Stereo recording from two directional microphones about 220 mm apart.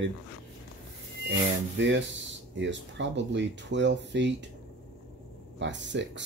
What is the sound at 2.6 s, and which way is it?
Speech, 55° right (ahead or behind).